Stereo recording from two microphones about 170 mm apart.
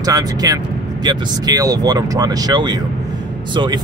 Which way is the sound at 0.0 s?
20° right (ahead or behind).